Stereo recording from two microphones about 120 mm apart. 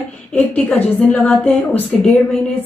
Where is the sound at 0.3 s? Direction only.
15° left (ahead or behind).